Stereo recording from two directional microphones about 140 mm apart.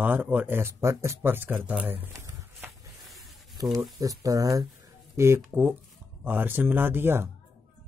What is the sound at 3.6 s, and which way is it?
Speech, 25° right (ahead or behind).